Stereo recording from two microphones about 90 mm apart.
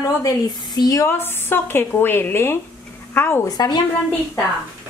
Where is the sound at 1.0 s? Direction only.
25° left (ahead or behind).